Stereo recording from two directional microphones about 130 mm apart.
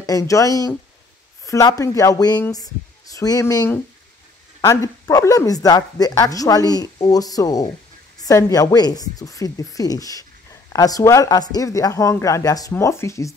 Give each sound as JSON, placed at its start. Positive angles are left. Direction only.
{"t": 0.0, "sound": "a woman's voice", "side_deg": 25}